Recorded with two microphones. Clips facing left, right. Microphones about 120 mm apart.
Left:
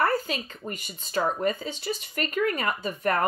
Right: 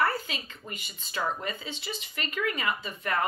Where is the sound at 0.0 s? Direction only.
45° left (ahead or behind).